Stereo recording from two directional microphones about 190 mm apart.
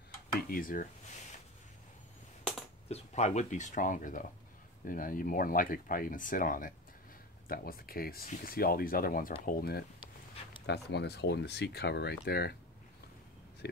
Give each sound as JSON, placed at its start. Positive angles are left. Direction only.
{"t": 0.5, "sound": "speech", "side_deg": 45}
{"t": 2.9, "sound": "speech", "side_deg": 35}